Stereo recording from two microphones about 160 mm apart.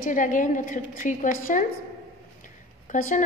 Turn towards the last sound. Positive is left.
turn(degrees=55)  # may be behind; listen again after turning